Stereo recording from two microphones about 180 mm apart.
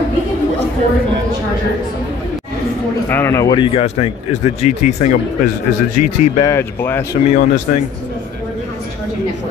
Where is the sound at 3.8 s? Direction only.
35° left (ahead or behind).